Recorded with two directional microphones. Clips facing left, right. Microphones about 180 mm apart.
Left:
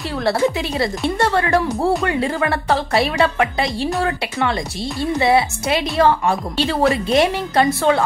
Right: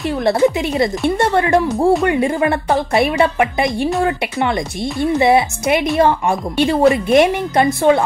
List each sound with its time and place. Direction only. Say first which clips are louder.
0.2 s a woman's voice: right 3 dB; 20° right (ahead or behind)